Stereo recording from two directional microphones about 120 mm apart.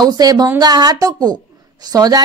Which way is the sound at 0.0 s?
35° right (ahead or behind).